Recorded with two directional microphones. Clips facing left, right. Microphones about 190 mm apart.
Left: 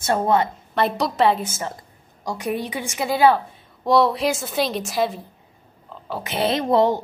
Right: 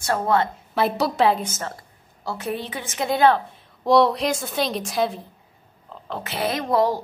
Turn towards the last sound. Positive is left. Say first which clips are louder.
# left 3 dB
turn(degrees=25)  # may be behind; listen again after turning